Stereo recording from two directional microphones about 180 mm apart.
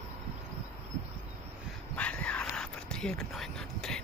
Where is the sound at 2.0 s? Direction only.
5° left (ahead or behind).